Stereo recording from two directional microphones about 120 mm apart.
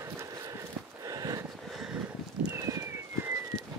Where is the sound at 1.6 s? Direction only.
5° right (ahead or behind).